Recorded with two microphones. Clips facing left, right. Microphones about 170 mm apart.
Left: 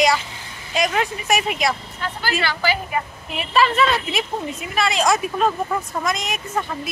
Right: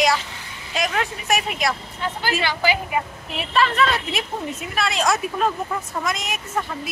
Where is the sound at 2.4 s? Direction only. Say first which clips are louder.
Right 1 dB; 15° right (ahead or behind).